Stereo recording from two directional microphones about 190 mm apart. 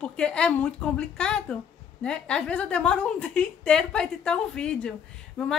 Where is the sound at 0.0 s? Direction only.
5° left (ahead or behind).